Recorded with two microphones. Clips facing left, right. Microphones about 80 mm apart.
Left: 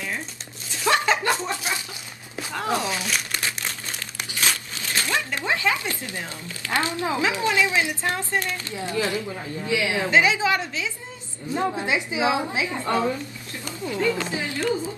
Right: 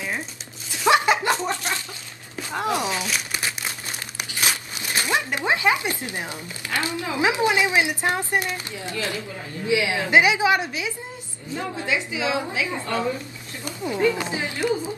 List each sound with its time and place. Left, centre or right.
0.8 s chuckle: centre
1.5 s a sound: centre
2.5 s crumpling: centre
4.2 s a sound: centre
6.7 s a woman's voice: left
7.2 s a woman's voice: right
8.9 s a woman's voice: left
9.7 s a woman's voice: right
11.5 s a woman's voice: left
13.7 s a woman's voice: centre